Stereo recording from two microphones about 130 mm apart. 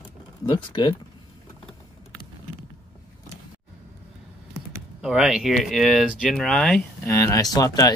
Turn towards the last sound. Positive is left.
turn(degrees=30)  # may be behind; listen again after turning